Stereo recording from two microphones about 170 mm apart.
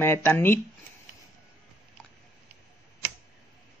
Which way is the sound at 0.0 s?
15° left (ahead or behind).